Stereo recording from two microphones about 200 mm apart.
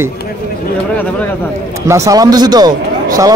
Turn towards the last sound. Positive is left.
turn(degrees=-15)  # may be behind; listen again after turning